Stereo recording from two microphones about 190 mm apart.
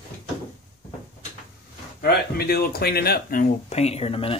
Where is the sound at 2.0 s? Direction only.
55° left (ahead or behind); by 4.3 s 30° left (ahead or behind).